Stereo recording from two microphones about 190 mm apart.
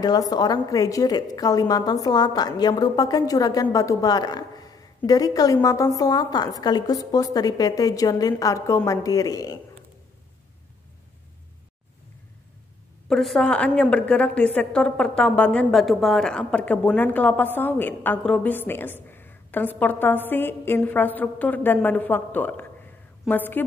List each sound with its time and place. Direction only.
0.0 s a woman's voice: 20° left (ahead or behind)
13.1 s a woman's voice: centre (ahead or behind)